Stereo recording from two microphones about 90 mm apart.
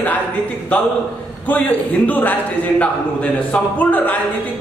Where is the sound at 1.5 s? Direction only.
20° left (ahead or behind).